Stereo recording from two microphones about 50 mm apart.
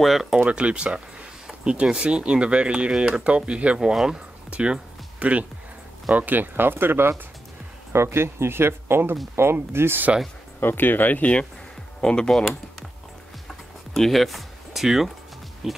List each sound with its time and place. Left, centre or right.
0.0 s speech: centre
0.5 s speech: right
3.8 s speech: centre
4.5 s speech: right
10.6 s speech: left
12.0 s speech: centre
13.9 s speech: centre